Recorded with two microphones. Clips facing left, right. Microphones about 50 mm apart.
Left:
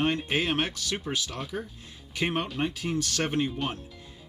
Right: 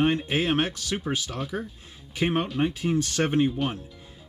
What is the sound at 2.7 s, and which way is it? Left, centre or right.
Speech, right.